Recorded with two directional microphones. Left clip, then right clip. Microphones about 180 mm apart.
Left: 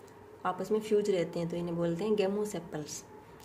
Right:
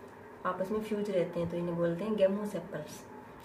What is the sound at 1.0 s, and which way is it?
Speech, 65° left (ahead or behind).